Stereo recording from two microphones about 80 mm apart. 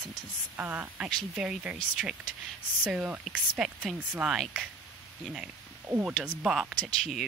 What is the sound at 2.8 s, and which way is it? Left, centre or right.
Speech, centre.